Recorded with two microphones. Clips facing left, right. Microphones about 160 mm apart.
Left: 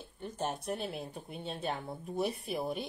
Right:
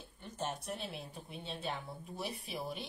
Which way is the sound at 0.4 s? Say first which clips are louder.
Left 4 dB; 50° left (ahead or behind).